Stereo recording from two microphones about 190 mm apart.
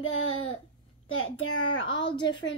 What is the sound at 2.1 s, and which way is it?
Speech, 25° left (ahead or behind).